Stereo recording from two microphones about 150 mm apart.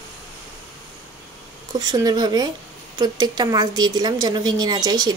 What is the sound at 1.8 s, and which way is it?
Speech, 25° right (ahead or behind).